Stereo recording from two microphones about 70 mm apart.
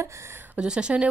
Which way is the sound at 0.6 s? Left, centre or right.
Centre.